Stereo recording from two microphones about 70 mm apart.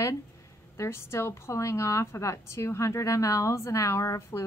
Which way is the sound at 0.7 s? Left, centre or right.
Left.